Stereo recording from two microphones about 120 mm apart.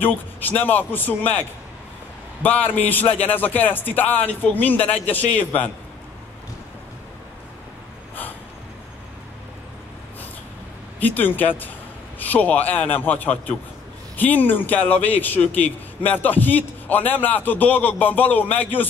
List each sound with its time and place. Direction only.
0.0 s a man's voice: 15° left (ahead or behind)
2.4 s a man's voice: 15° left (ahead or behind)
11.0 s a man's voice: 15° left (ahead or behind)